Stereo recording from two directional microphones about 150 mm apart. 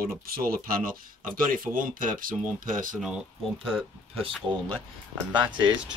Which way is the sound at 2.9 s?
5° right (ahead or behind).